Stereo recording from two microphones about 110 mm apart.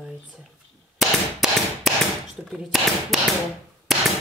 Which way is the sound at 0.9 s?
Centre (ahead or behind).